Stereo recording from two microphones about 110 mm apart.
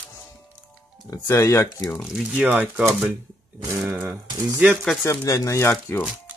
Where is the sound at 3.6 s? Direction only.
25° right (ahead or behind).